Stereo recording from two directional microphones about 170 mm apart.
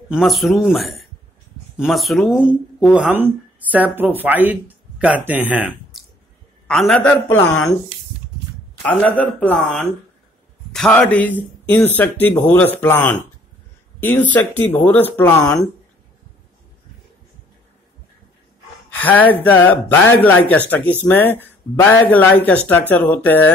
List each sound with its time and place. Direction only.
0.1 s speech: centre (ahead or behind)
6.7 s speech: 5° left (ahead or behind)
8.8 s speech: 10° left (ahead or behind)
18.9 s speech: 10° left (ahead or behind)